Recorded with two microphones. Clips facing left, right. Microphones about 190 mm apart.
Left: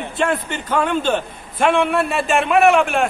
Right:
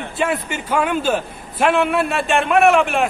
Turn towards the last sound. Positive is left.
turn(degrees=0)  # may be behind; listen again after turning